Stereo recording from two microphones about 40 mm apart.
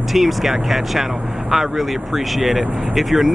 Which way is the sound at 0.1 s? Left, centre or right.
Centre.